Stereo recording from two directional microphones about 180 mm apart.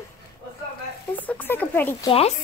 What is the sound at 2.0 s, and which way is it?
Speech, 30° left (ahead or behind).